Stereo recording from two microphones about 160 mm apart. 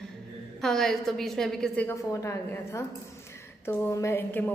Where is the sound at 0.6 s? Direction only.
5° left (ahead or behind).